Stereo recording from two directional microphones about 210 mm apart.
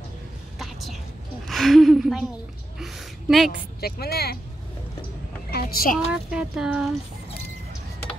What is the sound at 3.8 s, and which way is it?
Speech, 50° left (ahead or behind).